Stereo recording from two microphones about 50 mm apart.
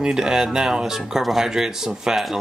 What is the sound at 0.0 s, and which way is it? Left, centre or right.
Speech, centre.